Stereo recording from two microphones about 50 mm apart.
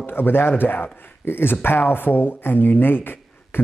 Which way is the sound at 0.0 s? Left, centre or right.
Left.